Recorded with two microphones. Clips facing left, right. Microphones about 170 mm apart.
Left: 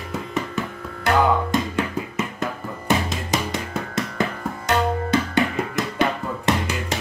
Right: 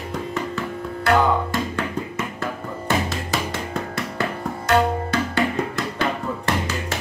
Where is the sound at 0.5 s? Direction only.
20° left (ahead or behind).